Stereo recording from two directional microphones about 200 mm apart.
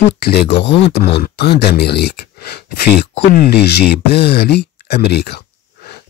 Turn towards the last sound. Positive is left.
turn(degrees=55)  # may be behind; listen again after turning